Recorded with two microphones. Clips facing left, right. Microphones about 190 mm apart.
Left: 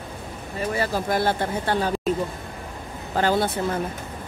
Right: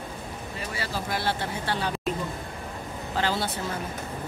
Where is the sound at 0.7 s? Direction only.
50° left (ahead or behind).